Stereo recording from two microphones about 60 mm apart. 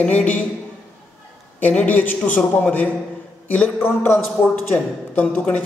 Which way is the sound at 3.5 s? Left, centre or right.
Left.